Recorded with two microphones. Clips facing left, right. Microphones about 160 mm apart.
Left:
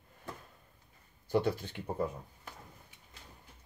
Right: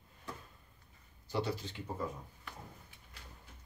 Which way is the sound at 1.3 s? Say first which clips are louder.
Left 6 dB; 55° left (ahead or behind).